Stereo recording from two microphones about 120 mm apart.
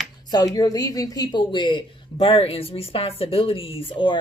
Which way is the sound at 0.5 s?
35° left (ahead or behind).